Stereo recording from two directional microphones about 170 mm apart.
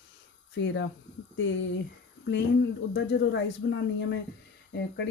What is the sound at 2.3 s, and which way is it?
A woman's voice, 90° left.